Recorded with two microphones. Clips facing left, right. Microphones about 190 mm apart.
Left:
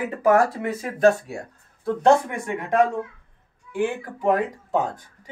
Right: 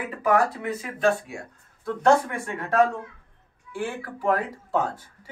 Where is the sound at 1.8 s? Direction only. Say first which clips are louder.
Left 2 dB; 20° left (ahead or behind).